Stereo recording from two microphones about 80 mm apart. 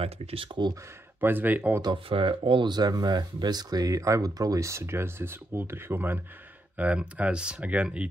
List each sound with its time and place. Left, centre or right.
0.5 s speech: right
1.2 s speech: right
1.8 s speech: right; by 8.1 s centre